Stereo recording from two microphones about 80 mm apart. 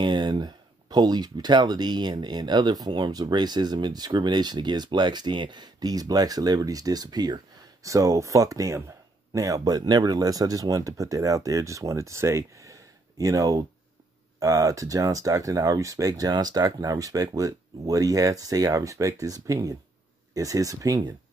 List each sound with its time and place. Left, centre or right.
0.0 s speech: right
7.8 s speech: right